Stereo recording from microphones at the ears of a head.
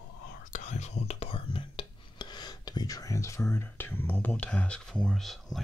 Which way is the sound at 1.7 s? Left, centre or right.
Left.